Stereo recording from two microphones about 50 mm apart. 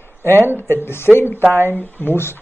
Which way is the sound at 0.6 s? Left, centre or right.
Left.